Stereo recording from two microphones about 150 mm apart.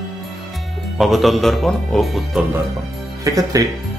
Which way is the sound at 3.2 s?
25° right (ahead or behind).